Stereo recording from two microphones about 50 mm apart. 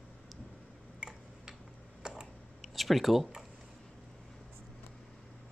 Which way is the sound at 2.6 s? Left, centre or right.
Centre.